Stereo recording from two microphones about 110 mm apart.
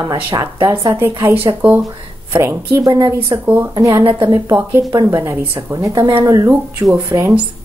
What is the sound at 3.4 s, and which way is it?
Speech, 25° right (ahead or behind).